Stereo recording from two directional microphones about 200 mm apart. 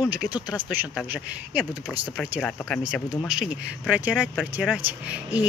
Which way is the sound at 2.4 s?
5° left (ahead or behind).